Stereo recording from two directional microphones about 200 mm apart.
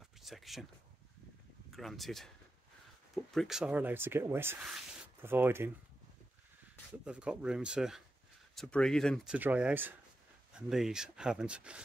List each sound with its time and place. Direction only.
0.2 s speech: centre (ahead or behind)
1.7 s speech: centre (ahead or behind)
7.1 s speech: 5° right (ahead or behind)